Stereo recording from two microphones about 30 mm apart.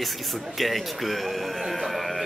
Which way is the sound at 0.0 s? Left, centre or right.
Centre.